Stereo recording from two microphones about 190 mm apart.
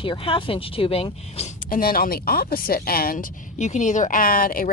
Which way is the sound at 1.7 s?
50° left (ahead or behind).